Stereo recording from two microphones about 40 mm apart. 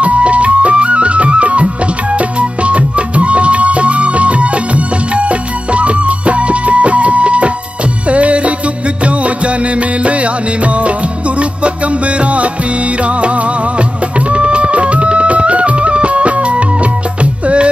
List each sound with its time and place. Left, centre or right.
0.0 s music: right
12.2 s music: right
14.3 s music: right